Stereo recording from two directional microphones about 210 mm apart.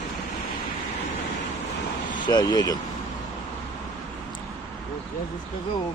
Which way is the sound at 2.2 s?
20° left (ahead or behind).